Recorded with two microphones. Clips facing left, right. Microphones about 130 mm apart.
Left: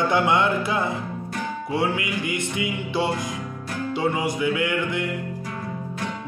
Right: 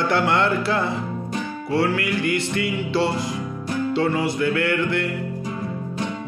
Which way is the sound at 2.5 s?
15° left (ahead or behind).